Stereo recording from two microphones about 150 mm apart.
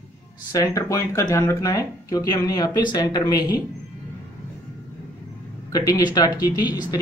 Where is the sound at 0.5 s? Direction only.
20° left (ahead or behind).